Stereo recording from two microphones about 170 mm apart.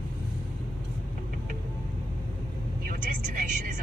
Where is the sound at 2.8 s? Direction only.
55° right (ahead or behind).